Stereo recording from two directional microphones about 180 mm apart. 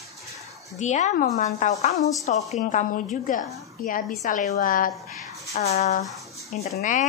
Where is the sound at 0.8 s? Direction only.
40° left (ahead or behind).